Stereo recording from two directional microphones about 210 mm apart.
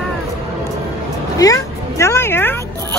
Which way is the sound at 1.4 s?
15° left (ahead or behind).